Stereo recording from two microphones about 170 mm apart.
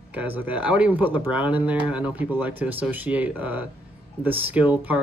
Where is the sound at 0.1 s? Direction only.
10° right (ahead or behind).